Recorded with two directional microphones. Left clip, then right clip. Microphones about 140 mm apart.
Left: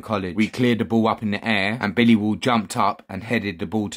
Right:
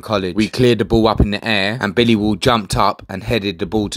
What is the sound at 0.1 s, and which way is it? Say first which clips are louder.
Speech: right 6 dB; 30° right (ahead or behind).